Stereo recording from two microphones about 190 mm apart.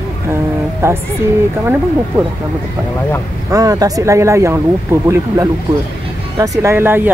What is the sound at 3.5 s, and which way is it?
Speech, 20° right (ahead or behind).